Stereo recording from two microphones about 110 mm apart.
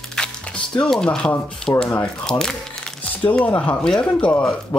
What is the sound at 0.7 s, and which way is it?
Speech, 5° left (ahead or behind).